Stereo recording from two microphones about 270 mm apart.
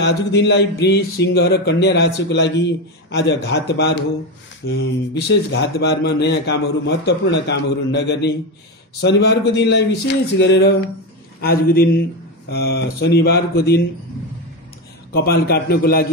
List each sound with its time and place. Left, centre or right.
0.0 s speech: left
15.1 s speech: left